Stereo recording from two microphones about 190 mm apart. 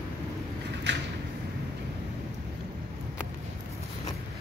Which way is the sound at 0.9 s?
65° right (ahead or behind).